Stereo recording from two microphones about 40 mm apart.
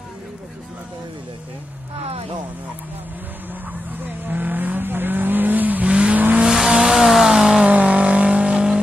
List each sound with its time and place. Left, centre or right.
4.0 s vehicle: right
5.9 s vehicle: right
6.5 s vehicle: centre
7.6 s vehicle: right